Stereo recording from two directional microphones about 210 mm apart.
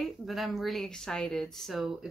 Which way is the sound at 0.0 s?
Centre (ahead or behind).